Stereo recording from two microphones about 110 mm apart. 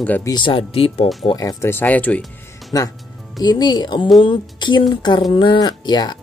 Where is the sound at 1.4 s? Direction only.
35° left (ahead or behind).